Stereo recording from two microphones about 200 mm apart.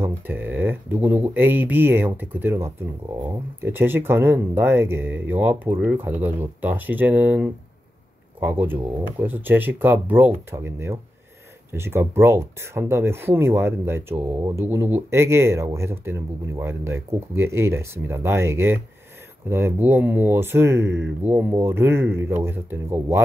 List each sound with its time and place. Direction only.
0.0 s speech: 10° right (ahead or behind)